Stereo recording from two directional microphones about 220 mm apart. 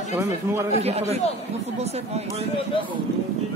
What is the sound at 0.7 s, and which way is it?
Speech, 30° right (ahead or behind).